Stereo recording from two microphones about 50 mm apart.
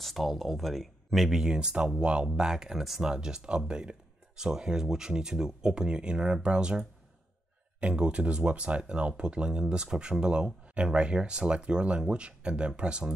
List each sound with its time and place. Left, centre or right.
0.0 s speech: centre
1.4 s speech: centre